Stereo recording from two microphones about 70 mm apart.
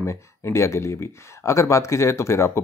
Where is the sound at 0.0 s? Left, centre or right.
Left.